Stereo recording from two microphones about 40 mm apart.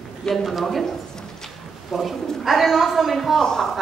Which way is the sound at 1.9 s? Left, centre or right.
Centre.